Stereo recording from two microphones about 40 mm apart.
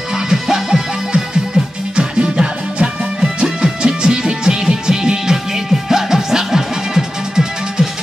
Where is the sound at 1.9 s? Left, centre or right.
Right.